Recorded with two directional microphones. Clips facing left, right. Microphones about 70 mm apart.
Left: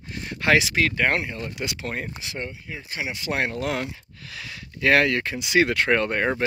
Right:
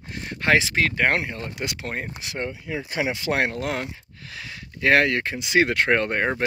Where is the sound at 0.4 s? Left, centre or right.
Right.